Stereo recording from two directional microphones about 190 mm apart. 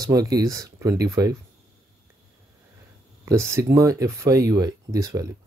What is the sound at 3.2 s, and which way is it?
Speech, 15° right (ahead or behind).